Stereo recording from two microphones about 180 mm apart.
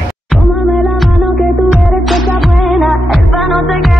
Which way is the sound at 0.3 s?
Centre (ahead or behind).